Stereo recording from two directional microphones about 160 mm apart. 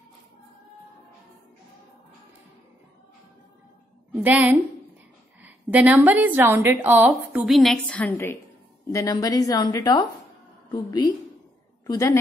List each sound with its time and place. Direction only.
4.1 s a woman's voice: 10° right (ahead or behind)
7.5 s a woman's voice: 5° left (ahead or behind); by 12.2 s 20° left (ahead or behind)